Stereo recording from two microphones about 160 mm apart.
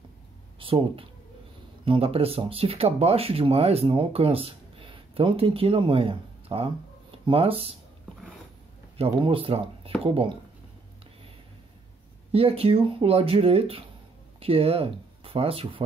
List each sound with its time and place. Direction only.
0.6 s speech: 35° right (ahead or behind)
8.9 s speech: 35° right (ahead or behind)
12.3 s speech: 40° right (ahead or behind)